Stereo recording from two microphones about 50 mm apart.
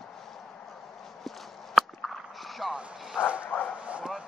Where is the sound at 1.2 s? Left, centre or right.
Centre.